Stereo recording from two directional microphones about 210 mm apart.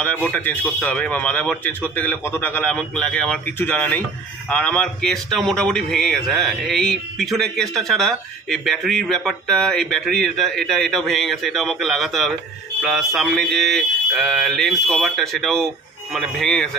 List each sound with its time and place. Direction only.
0.0 s a man's voice: 5° left (ahead or behind)